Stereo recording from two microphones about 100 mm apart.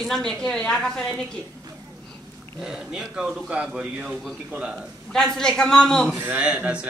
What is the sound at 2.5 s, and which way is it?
A man's voice, 5° right (ahead or behind).